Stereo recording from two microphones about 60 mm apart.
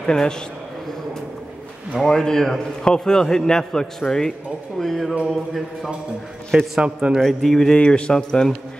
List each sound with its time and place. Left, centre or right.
0.0 s a man's voice: centre
2.0 s a man's voice: centre
4.7 s mantra: centre
6.8 s a man's voice: centre
7.2 s mantra: centre
7.7 s a man's voice: centre